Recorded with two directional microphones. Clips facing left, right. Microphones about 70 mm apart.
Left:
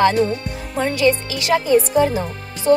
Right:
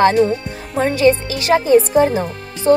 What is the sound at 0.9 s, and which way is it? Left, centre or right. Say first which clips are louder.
Speech: right 4 dB; right.